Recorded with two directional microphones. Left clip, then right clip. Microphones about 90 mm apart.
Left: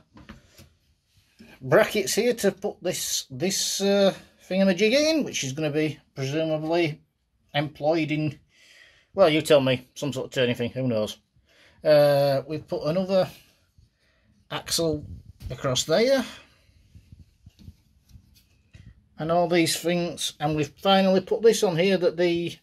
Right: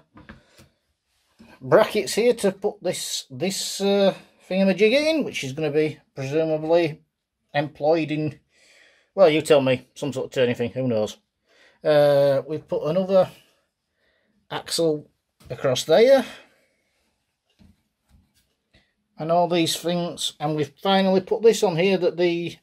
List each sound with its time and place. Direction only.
1.7 s speech: 25° right (ahead or behind)
14.5 s speech: 40° right (ahead or behind); by 16.6 s 15° right (ahead or behind)
18.7 s a sound: 5° right (ahead or behind)
19.5 s speech: 15° right (ahead or behind)